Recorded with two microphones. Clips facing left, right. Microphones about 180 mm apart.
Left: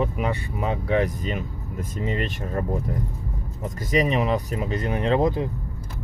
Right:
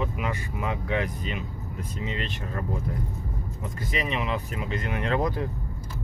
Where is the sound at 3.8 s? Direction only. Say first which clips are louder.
Left 8 dB; 40° left (ahead or behind); by 5.5 s 25° left (ahead or behind).